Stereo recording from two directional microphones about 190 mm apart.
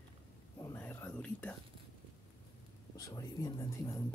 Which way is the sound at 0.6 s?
10° left (ahead or behind).